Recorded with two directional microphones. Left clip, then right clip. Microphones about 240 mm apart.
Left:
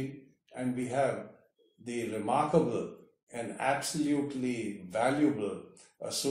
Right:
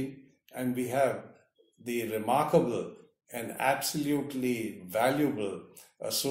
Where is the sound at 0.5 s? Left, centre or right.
Right.